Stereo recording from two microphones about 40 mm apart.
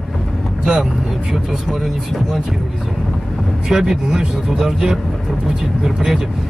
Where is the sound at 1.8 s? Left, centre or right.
Centre.